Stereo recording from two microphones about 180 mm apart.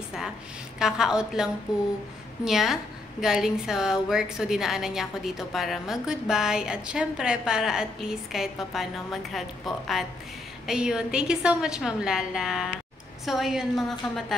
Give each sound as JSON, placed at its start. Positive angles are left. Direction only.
{"t": 0.7, "sound": "a woman's voice", "side_deg": -5}